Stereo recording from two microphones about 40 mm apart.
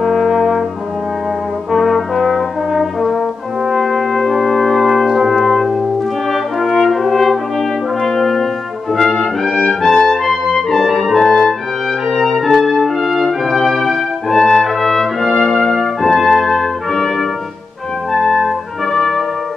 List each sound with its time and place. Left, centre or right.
0.0 s brass instrument: centre
1.7 s brass instrument: centre
5.2 s music: centre
6.3 s french horn: centre
8.0 s brass instrument: centre
9.8 s trumpet: centre
10.1 s music: centre
11.2 s music: centre
12.2 s music: centre
13.5 s brass instrument: centre
16.9 s trumpet: centre
18.1 s music: centre
18.9 s trumpet: centre